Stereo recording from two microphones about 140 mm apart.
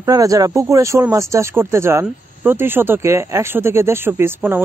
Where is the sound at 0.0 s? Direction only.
25° right (ahead or behind).